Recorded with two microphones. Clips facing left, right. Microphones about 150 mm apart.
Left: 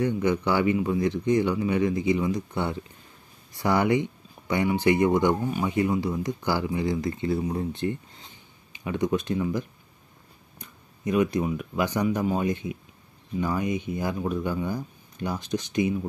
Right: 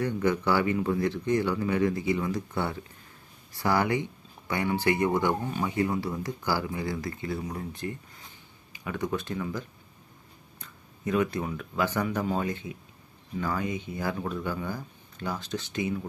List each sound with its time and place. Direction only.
0.0 s speech: 20° left (ahead or behind)